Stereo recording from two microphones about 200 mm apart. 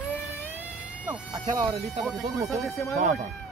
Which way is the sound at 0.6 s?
5° right (ahead or behind).